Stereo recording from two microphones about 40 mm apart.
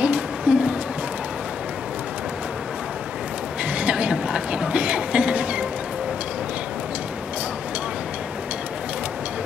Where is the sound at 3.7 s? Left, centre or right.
Right.